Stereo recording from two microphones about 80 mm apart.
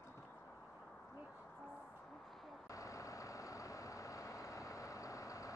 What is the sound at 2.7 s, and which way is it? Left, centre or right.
Vehicle, left.